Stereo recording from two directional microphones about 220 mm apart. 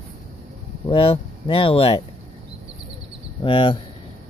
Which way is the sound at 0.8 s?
25° left (ahead or behind).